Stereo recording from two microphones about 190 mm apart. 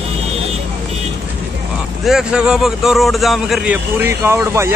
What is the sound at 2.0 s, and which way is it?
A man's voice, 5° right (ahead or behind).